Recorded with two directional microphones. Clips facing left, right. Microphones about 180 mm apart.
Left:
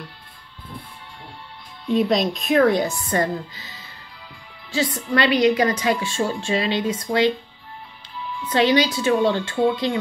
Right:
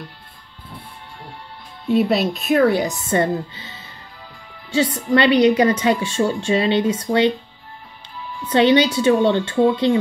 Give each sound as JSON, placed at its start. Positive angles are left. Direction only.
{"t": 1.9, "sound": "speech", "side_deg": -5}
{"t": 2.9, "sound": "a woman's voice", "side_deg": -25}
{"t": 8.5, "sound": "a woman's voice", "side_deg": -30}